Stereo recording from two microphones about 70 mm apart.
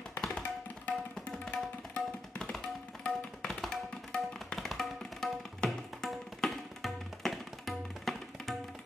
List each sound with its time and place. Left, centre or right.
0.2 s tabla: centre